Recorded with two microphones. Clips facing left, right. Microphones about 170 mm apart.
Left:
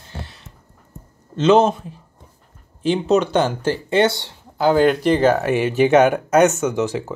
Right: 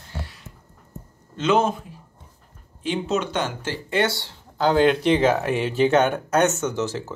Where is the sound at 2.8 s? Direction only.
35° left (ahead or behind).